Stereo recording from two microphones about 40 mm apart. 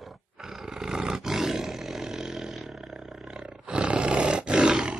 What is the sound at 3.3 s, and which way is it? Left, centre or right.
Roar, right.